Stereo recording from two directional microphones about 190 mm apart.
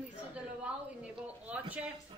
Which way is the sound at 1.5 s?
5° right (ahead or behind).